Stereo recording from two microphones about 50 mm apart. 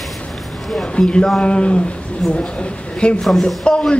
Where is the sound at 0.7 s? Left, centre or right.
Centre.